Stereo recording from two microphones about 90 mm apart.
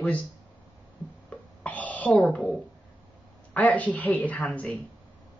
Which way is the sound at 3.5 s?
15° left (ahead or behind).